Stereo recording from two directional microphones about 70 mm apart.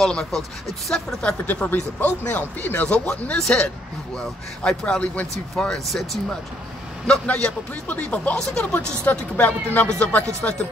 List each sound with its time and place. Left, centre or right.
0.0 s speech: centre
1.2 s speech: centre
7.1 s speech: centre